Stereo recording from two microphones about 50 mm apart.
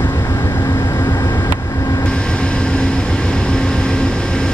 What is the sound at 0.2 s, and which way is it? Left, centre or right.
Vehicle, left.